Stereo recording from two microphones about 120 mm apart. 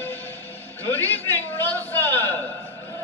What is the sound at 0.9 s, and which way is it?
A man's voice, 15° left (ahead or behind).